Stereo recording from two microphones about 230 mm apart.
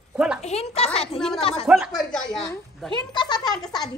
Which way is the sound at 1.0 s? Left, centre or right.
Centre.